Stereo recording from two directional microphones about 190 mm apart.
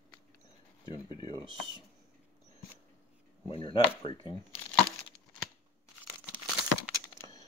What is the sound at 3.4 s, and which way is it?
Speech, 25° left (ahead or behind).